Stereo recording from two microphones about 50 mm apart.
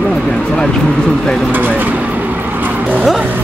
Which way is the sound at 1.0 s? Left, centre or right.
Centre.